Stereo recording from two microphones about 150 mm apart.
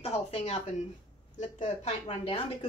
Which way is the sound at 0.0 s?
45° left (ahead or behind).